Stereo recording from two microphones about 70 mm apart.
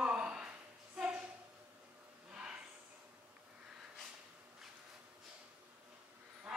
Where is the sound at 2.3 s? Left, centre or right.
Centre.